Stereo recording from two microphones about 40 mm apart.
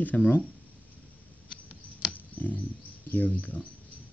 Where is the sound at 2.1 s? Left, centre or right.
Left.